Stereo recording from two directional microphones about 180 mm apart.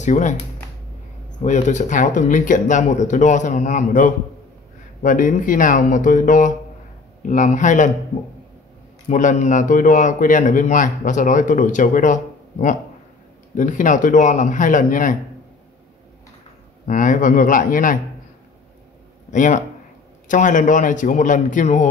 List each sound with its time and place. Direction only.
0.0 s speech: 40° left (ahead or behind)
1.4 s a man's voice: 40° left (ahead or behind)
9.1 s a man's voice: 45° left (ahead or behind)
16.8 s a man's voice: 45° left (ahead or behind)
19.3 s a man's voice: 45° left (ahead or behind)